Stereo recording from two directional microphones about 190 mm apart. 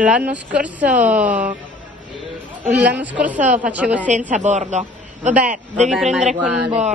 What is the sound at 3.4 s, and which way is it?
Speech, 40° right (ahead or behind).